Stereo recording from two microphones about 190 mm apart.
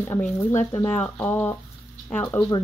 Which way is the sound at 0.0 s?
15° left (ahead or behind).